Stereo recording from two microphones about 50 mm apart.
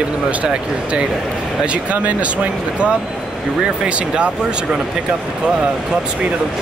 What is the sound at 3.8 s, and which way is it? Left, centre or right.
Speech, right.